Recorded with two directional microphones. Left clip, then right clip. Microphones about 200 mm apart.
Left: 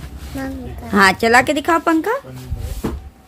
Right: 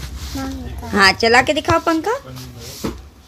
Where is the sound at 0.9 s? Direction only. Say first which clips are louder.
Even; 25° left (ahead or behind).